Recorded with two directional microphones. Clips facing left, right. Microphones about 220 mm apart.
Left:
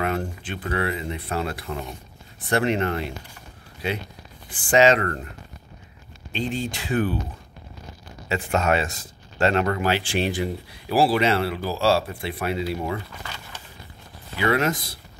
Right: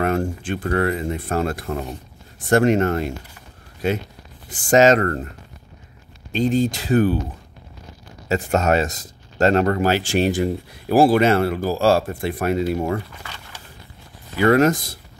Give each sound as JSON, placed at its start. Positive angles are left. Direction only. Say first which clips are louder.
{"t": 0.0, "sound": "speech", "louder": "right 5 dB", "side_deg": -45}
{"t": 6.3, "sound": "speech", "louder": "right 9 dB", "side_deg": -40}
{"t": 8.3, "sound": "speech", "louder": "right 4 dB", "side_deg": -40}
{"t": 14.4, "sound": "speech", "louder": "right 7 dB", "side_deg": -45}